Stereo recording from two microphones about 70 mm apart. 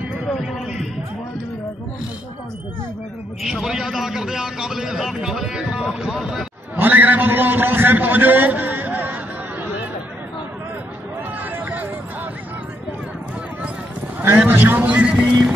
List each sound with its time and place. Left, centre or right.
3.4 s a man's voice: centre
6.8 s a man's voice: right
11.5 s a sound: right
14.2 s a man's voice: right